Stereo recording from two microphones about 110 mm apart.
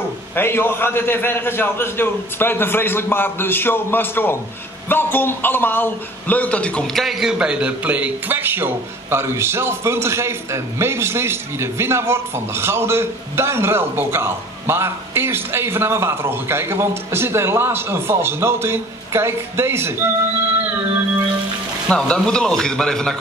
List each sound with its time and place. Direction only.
0.4 s a man's voice: 20° left (ahead or behind); by 20.1 s 20° right (ahead or behind)
21.8 s speech: 10° left (ahead or behind)